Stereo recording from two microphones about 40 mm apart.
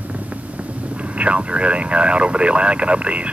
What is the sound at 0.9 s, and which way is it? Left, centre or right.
Speech, right.